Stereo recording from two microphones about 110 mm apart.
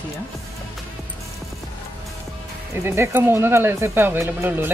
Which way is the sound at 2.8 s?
25° right (ahead or behind).